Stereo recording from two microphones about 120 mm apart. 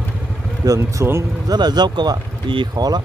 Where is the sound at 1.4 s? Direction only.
35° right (ahead or behind).